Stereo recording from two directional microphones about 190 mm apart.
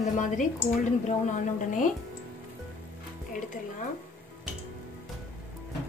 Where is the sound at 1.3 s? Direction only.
40° left (ahead or behind).